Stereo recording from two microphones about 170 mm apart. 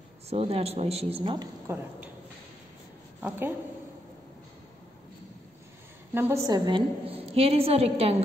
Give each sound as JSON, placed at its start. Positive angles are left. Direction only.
{"t": 0.3, "sound": "a woman's voice", "side_deg": -35}
{"t": 3.2, "sound": "speech", "side_deg": -10}
{"t": 6.1, "sound": "a woman's voice", "side_deg": -15}